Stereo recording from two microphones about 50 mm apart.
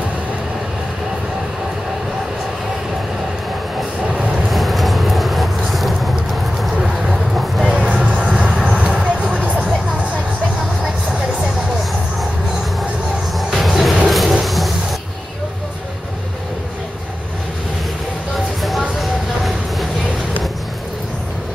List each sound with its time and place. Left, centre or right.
4.2 s vehicle: right
4.5 s vehicle: centre
7.6 s music: right
8.2 s vehicle: centre
13.5 s music: centre
14.0 s a sound: centre
18.6 s vehicle: centre